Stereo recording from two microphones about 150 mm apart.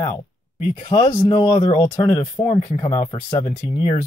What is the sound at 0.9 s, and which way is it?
Speech, 25° left (ahead or behind).